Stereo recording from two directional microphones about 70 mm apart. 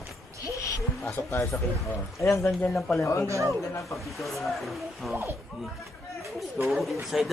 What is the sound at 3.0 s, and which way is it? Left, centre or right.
Speech, left.